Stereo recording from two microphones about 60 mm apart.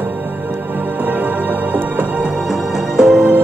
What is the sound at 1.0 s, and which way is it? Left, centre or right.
Music, right.